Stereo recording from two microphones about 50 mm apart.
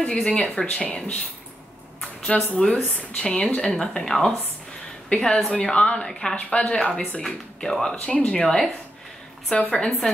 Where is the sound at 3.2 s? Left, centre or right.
Centre.